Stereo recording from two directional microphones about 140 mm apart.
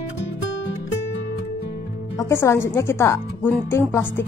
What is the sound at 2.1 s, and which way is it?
A woman's voice, 20° left (ahead or behind).